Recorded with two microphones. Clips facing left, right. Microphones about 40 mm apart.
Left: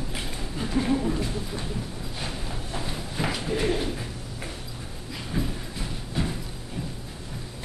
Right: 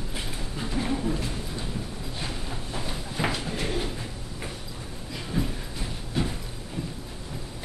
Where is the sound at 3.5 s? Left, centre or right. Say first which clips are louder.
Left 5 dB; centre.